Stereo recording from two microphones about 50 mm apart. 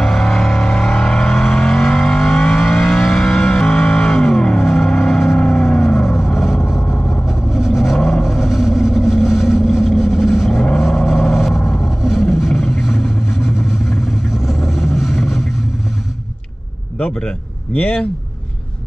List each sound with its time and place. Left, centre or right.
0.0 s vehicle: centre
4.6 s a sound: centre
5.4 s music: centre
6.1 s vehicle: centre
6.9 s vehicle: centre
7.2 s vehicle: centre
17.7 s speech: left